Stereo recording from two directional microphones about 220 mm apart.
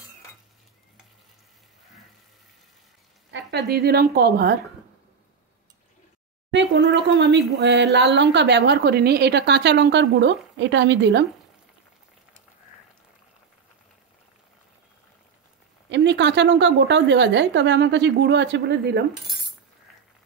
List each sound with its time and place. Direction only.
3.3 s a woman's voice: 50° right (ahead or behind)
6.5 s speech: 55° right (ahead or behind)
15.9 s speech: 55° right (ahead or behind)